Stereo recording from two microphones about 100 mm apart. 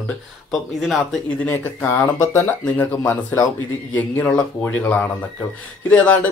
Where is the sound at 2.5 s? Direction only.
15° left (ahead or behind).